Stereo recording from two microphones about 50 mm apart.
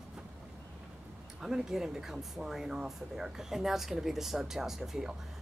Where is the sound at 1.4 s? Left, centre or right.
Centre.